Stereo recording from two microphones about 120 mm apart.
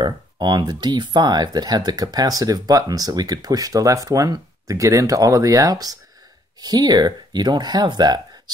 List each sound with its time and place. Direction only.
0.0 s speech: 40° right (ahead or behind)